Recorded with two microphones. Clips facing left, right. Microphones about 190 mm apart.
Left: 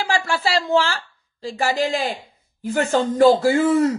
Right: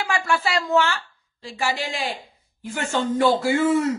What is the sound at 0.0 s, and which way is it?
A woman's voice, 30° left (ahead or behind).